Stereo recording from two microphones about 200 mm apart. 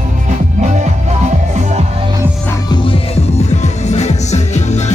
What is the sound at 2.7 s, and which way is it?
Music, 25° left (ahead or behind).